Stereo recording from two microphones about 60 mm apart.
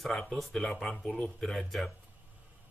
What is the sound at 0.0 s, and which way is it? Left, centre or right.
Speech, centre.